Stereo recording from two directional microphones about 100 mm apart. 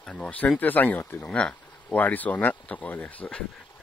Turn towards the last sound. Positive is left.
turn(degrees=15)  # may be behind; listen again after turning